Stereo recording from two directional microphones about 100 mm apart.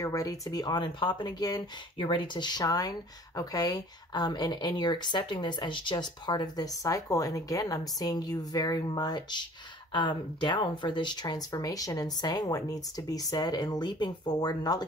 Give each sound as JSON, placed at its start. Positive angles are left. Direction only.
{"t": 0.0, "sound": "speech", "side_deg": 35}